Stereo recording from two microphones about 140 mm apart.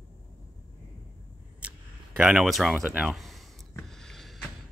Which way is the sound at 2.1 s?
5° right (ahead or behind).